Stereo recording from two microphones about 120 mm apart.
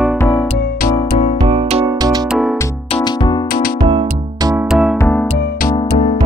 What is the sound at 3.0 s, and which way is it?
Music, 35° left (ahead or behind).